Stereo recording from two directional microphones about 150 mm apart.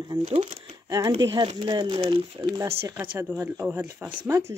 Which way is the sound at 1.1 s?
35° right (ahead or behind).